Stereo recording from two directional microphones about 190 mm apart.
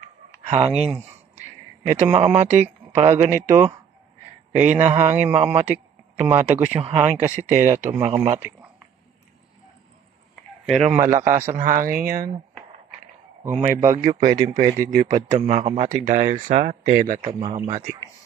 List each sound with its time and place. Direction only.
0.5 s a man's voice: 35° right (ahead or behind)
8.4 s a sound: 10° right (ahead or behind)
10.6 s speech: 5° right (ahead or behind)
11.1 s speech: 40° right (ahead or behind)
13.5 s speech: 40° right (ahead or behind)
14.8 s speech: 20° right (ahead or behind)
15.2 s speech: 35° right (ahead or behind)
17.2 s speech: 25° right (ahead or behind)